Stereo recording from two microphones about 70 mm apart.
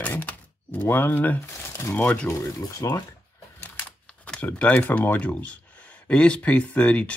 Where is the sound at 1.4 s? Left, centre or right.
Left.